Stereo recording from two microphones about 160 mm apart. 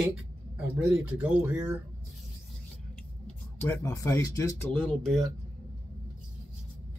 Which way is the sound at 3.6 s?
20° left (ahead or behind).